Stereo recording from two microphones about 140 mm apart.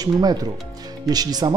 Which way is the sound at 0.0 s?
25° right (ahead or behind).